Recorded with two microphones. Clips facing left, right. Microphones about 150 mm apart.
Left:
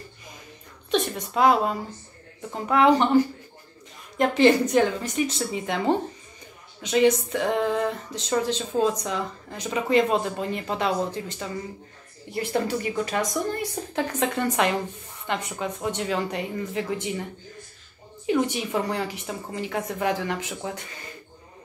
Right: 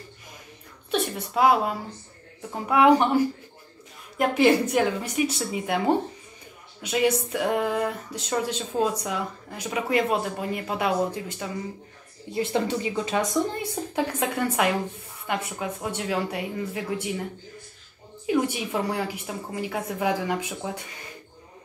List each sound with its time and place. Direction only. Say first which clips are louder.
0.9 s speech: left 1 dB; 5° right (ahead or behind)
4.2 s speech: left 1 dB; 10° right (ahead or behind)
6.8 s a woman's voice: left 3 dB; 10° right (ahead or behind)
18.2 s speech: left 1 dB; 5° right (ahead or behind)